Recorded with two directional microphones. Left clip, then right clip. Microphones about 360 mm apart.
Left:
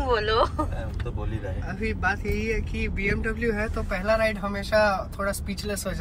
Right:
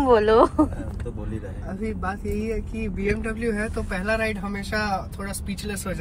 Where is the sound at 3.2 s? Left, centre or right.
Centre.